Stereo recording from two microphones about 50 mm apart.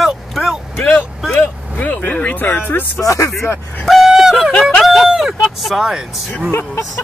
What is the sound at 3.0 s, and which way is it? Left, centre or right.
Speech, left.